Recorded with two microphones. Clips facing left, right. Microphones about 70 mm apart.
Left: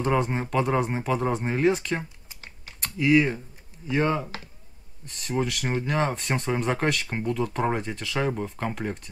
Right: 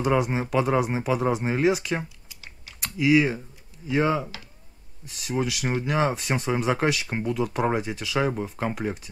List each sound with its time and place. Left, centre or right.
0.0 s speech: centre
2.2 s typing: left
2.8 s speech: centre